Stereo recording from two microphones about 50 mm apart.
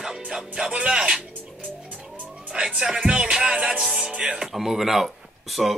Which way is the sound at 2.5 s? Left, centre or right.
Right.